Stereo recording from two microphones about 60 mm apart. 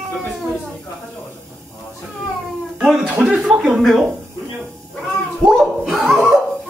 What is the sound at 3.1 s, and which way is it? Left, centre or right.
Speech, centre.